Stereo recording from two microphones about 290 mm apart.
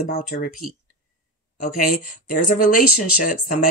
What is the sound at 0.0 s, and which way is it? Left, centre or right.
Speech, left.